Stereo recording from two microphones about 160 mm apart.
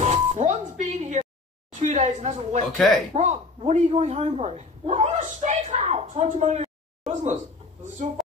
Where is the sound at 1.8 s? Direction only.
45° right (ahead or behind).